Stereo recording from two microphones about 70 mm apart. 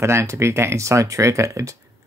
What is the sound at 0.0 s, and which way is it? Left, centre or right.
Speech, right.